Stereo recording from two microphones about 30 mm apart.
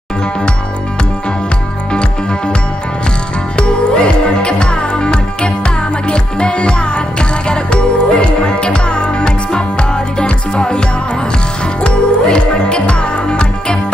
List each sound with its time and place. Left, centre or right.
3.5 s music: left
11.8 s music: left